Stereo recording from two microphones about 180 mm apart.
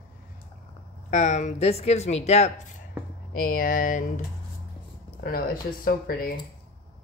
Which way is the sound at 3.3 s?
50° left (ahead or behind).